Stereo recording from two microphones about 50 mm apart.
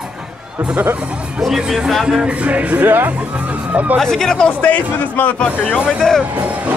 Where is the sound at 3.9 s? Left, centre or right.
Centre.